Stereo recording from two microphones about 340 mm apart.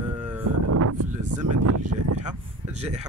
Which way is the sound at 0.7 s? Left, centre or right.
Right.